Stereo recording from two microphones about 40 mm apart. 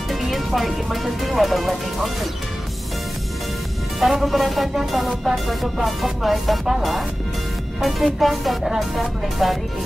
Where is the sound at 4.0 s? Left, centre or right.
Centre.